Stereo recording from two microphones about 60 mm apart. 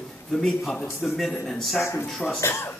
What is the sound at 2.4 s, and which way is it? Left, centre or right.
Speech, left.